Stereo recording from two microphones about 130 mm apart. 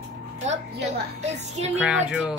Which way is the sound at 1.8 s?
5° right (ahead or behind).